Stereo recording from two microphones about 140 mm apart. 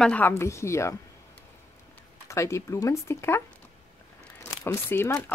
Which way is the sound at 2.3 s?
20° left (ahead or behind).